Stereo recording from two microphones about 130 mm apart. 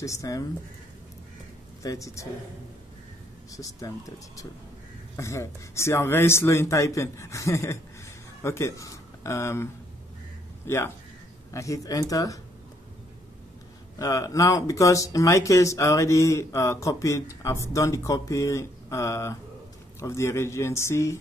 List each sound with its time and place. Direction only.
0.0 s speech: 25° left (ahead or behind)
1.8 s speech: 25° left (ahead or behind)
3.5 s speech: 25° left (ahead or behind)
13.9 s speech: 25° left (ahead or behind)